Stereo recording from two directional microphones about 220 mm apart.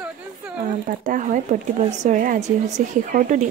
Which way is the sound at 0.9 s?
35° right (ahead or behind).